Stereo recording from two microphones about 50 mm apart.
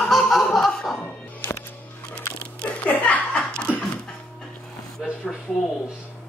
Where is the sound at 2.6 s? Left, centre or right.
Left.